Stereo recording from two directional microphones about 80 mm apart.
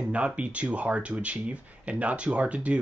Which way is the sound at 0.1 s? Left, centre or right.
Centre.